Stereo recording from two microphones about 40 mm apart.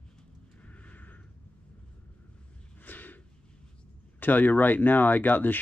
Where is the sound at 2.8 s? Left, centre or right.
Left.